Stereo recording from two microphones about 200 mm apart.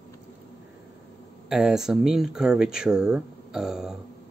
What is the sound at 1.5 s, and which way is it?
Speech, centre (ahead or behind).